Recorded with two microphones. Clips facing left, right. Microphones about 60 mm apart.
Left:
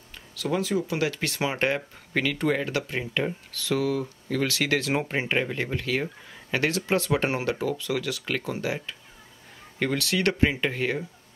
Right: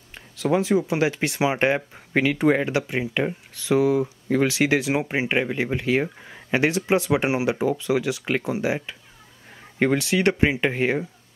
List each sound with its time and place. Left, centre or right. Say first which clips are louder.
0.1 s speech: right 6 dB; right